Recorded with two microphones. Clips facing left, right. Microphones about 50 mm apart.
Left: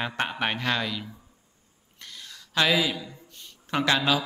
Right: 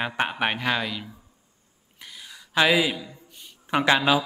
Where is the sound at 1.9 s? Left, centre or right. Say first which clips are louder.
Right 1 dB; centre.